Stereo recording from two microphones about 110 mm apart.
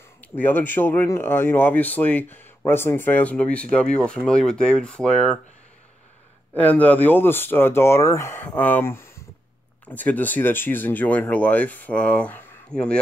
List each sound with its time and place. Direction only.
0.4 s speech: 15° left (ahead or behind)
6.5 s speech: 15° left (ahead or behind)